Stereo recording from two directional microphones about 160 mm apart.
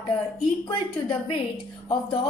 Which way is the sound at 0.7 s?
30° left (ahead or behind).